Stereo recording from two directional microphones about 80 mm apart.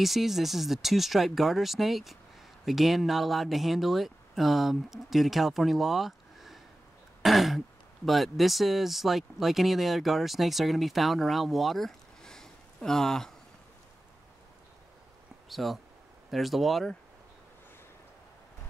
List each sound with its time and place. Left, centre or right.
0.0 s speech: centre
15.5 s speech: centre